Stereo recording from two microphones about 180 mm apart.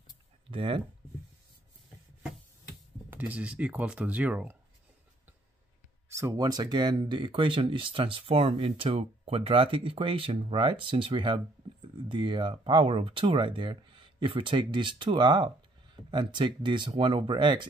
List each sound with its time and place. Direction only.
0.5 s speech: 30° right (ahead or behind)
3.1 s speech: 10° right (ahead or behind)
6.0 s speech: 15° right (ahead or behind)